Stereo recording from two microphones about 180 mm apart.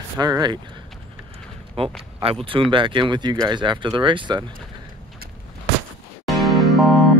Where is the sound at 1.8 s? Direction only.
30° right (ahead or behind).